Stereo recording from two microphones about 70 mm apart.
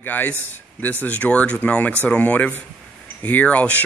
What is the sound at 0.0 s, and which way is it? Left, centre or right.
A man's voice, left.